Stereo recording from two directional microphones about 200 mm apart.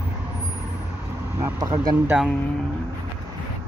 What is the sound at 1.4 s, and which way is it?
Speech, 20° right (ahead or behind).